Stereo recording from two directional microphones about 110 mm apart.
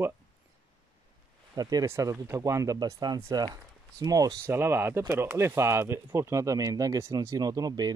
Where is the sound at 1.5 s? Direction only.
35° right (ahead or behind).